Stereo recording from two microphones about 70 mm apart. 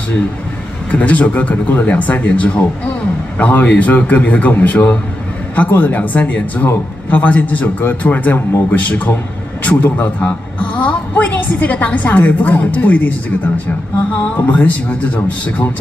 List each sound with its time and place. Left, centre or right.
0.9 s a woman's voice: left
14.3 s a woman's voice: left